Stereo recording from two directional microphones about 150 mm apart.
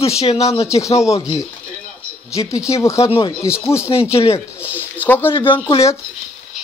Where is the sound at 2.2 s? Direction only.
20° left (ahead or behind).